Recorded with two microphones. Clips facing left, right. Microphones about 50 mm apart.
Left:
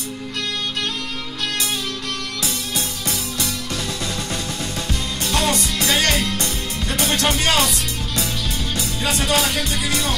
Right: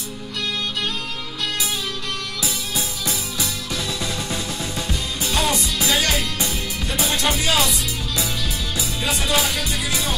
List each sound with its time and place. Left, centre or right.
3.1 s music: left
3.7 s music: centre
5.9 s music: left
9.0 s music: left